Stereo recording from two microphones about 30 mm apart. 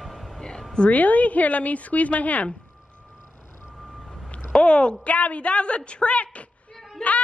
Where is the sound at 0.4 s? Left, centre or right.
Left.